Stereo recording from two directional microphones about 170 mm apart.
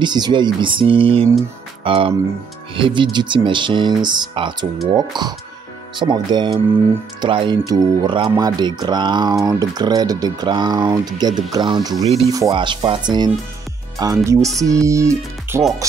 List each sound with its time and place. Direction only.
0.0 s speech: 25° right (ahead or behind)